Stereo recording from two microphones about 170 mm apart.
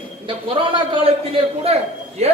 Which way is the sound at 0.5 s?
30° right (ahead or behind).